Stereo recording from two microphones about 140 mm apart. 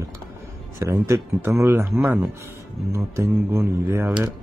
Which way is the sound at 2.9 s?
20° right (ahead or behind).